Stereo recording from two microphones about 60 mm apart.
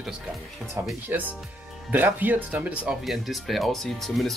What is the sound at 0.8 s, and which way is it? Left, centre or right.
Speech, right.